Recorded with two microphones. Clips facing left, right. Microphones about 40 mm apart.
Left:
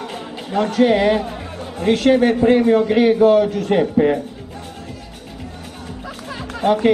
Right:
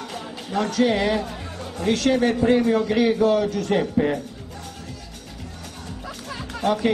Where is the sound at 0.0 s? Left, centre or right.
Left.